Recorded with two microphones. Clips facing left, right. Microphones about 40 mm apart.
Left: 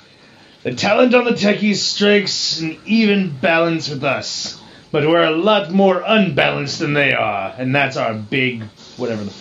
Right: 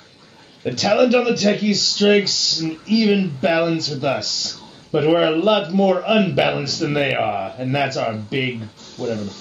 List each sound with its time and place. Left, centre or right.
0.7 s speech: left